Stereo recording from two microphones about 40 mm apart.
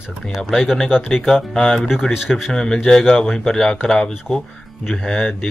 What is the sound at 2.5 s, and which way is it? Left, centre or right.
Speech, centre.